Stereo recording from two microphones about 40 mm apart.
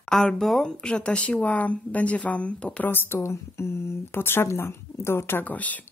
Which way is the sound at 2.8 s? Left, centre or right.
Left.